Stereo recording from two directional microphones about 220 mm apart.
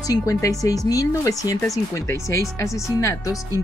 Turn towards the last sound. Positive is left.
turn(degrees=15)  # may be behind; listen again after turning